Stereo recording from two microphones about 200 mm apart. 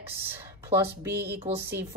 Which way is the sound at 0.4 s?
10° right (ahead or behind).